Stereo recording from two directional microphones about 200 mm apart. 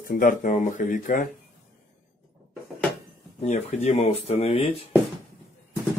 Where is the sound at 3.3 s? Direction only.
35° left (ahead or behind).